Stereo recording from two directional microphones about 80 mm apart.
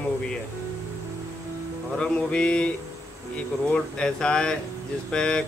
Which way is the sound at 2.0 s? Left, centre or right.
Centre.